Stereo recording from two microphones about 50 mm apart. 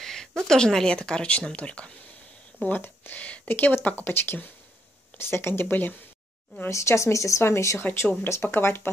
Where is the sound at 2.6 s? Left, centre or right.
Left.